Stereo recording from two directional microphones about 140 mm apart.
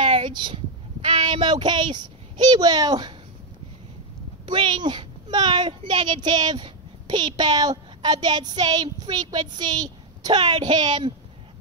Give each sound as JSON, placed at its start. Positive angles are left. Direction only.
{"t": 0.0, "sound": "a sound", "side_deg": -35}
{"t": 1.0, "sound": "a child's voice", "side_deg": -35}
{"t": 4.5, "sound": "a child's voice", "side_deg": -35}